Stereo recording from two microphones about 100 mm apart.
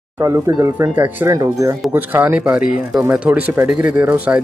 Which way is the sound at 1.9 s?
20° right (ahead or behind).